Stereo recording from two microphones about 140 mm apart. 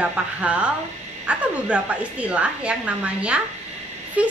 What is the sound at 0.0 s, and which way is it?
A woman's voice, 10° right (ahead or behind).